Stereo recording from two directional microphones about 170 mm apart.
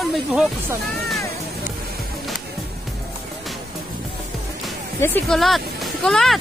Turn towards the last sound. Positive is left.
turn(degrees=0)  # may be behind; listen again after turning